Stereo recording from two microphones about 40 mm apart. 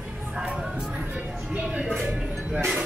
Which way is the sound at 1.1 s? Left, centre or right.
Right.